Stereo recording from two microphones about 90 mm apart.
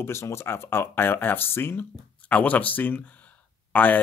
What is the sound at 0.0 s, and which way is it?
Speech, 30° left (ahead or behind).